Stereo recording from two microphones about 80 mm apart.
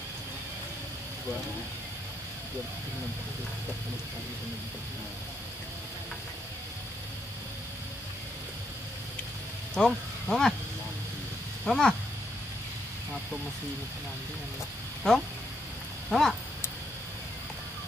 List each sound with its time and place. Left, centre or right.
9.8 s speech: centre
11.6 s speech: centre
15.0 s speech: centre